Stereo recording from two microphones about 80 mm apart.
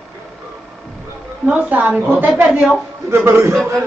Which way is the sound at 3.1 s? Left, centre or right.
Right.